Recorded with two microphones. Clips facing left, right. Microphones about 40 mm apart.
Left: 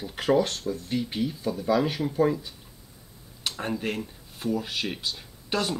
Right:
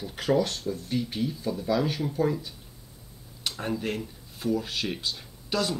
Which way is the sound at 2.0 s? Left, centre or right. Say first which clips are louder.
Left 3 dB; left.